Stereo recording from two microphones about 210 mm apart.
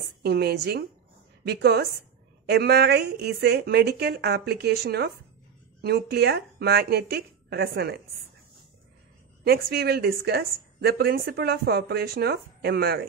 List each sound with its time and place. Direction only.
0.2 s a woman's voice: 50° right (ahead or behind)
9.4 s a woman's voice: 50° right (ahead or behind)